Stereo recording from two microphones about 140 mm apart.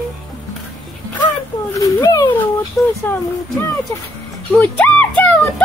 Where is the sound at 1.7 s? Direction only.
25° left (ahead or behind).